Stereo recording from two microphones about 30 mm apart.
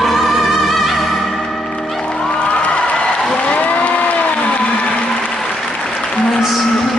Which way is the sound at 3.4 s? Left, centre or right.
Left.